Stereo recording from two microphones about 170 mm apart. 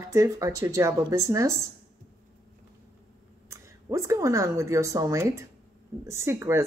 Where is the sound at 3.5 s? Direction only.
15° right (ahead or behind).